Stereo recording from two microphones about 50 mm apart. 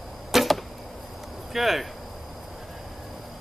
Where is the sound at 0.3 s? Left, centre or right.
Centre.